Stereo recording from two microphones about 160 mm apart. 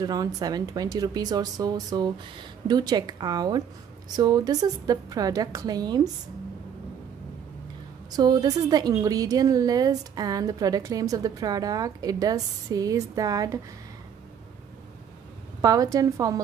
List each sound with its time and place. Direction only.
0.0 s a woman's voice: 25° right (ahead or behind)
8.2 s a woman's voice: 25° right (ahead or behind)
15.6 s a woman's voice: 20° right (ahead or behind)